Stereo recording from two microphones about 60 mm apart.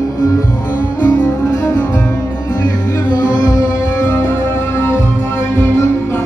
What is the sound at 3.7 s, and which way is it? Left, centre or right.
Music, left.